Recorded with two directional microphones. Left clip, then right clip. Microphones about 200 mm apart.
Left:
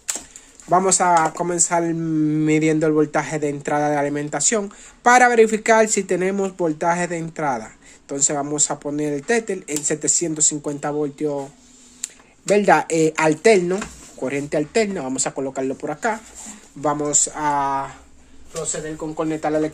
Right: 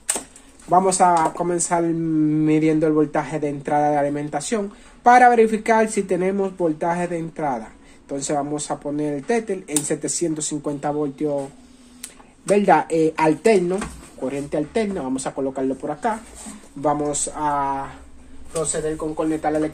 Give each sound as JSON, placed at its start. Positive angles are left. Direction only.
{"t": 0.7, "sound": "speech", "side_deg": 40}
{"t": 19.1, "sound": "speech", "side_deg": 60}